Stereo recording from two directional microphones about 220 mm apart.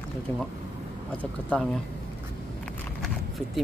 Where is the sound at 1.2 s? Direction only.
5° left (ahead or behind).